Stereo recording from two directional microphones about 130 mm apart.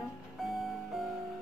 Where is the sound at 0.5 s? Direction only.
Centre (ahead or behind).